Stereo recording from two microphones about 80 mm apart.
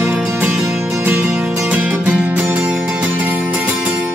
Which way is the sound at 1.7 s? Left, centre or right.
Centre.